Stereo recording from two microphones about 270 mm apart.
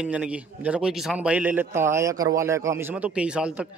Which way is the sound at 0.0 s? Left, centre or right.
Centre.